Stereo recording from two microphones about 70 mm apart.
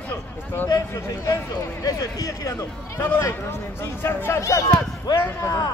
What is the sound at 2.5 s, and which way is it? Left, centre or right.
Speech, left.